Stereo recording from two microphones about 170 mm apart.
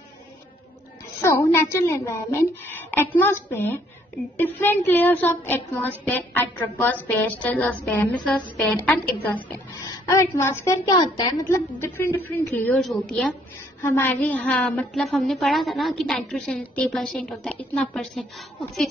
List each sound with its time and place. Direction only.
1.2 s a woman's voice: 15° left (ahead or behind)
13.8 s a woman's voice: 10° left (ahead or behind)